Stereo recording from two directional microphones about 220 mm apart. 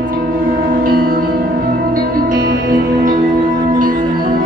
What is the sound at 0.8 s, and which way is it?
Music, 40° right (ahead or behind).